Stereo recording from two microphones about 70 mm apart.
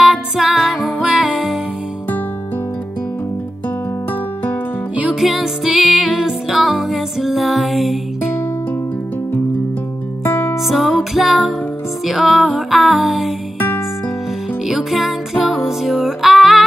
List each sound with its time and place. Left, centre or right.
0.0 s music: centre
5.2 s music: centre
10.2 s music: left
10.6 s music: centre
13.6 s music: left
14.7 s music: centre